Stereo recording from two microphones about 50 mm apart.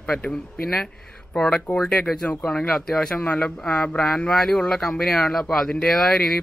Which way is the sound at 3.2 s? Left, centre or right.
Left.